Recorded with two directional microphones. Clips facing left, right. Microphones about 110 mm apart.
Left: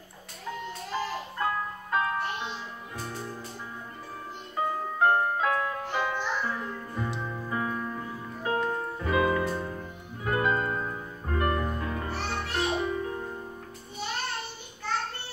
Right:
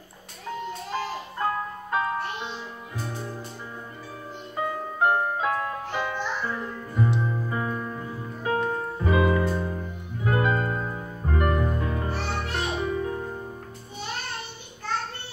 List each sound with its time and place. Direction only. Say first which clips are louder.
1.9 s music: right 1 dB; 15° right (ahead or behind)
4.9 s music: right 1 dB; 10° right (ahead or behind)
7.0 s music: right 8 dB; 10° right (ahead or behind)
9.6 s music: right 4 dB; 5° right (ahead or behind)